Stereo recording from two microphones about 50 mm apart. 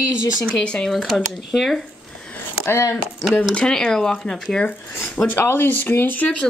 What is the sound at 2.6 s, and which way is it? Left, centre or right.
Speech, left.